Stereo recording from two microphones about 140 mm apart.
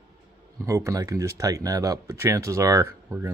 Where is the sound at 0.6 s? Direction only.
25° right (ahead or behind).